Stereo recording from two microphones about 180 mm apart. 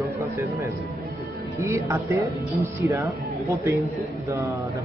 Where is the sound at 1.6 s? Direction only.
15° right (ahead or behind).